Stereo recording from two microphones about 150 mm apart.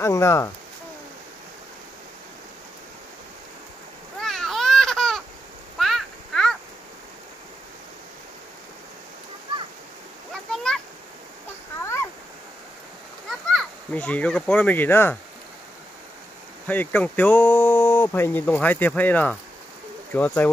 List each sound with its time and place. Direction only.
0.0 s speech: 20° left (ahead or behind)
4.2 s a sound: centre (ahead or behind)
10.3 s a sound: 5° left (ahead or behind)
11.8 s waterfall: 20° left (ahead or behind)
13.3 s a child's voice: centre (ahead or behind)
16.6 s speech: 10° left (ahead or behind)